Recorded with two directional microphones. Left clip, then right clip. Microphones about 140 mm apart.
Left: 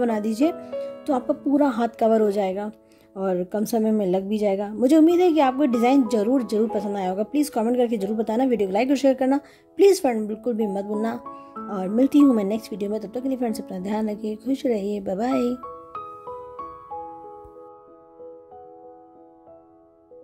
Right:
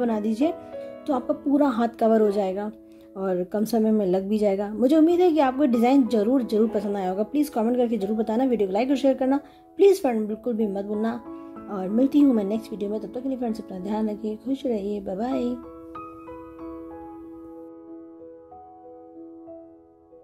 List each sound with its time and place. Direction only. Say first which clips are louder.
0.0 s a woman's voice: left 2 dB; 35° left (ahead or behind)